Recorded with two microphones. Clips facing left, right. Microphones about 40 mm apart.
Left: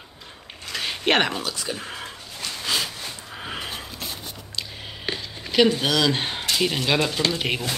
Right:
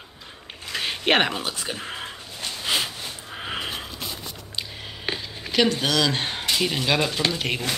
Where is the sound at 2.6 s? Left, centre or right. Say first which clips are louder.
Right 1 dB; right.